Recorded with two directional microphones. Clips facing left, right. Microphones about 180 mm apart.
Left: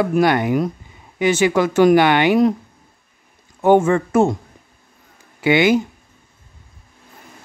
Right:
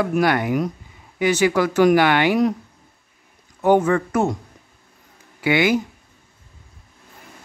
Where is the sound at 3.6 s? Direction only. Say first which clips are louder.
Left 3 dB; 25° left (ahead or behind).